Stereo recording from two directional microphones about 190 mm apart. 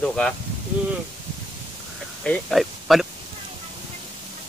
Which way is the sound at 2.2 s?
5° left (ahead or behind).